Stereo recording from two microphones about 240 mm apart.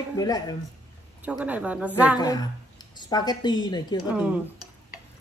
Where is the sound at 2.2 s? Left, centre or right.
Centre.